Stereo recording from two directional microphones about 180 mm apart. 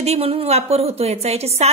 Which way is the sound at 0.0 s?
35° right (ahead or behind).